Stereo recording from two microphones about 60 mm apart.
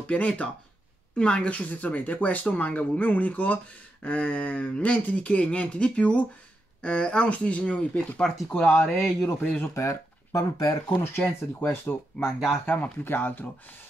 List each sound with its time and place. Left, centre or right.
0.0 s speech: left
8.5 s a man's voice: left
11.2 s speech: left
12.3 s speech: centre
12.6 s speech: left